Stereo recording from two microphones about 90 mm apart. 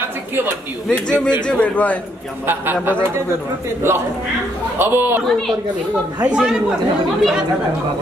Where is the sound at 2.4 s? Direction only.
25° right (ahead or behind).